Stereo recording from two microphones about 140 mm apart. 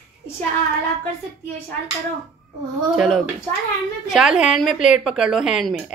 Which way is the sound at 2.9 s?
Centre (ahead or behind).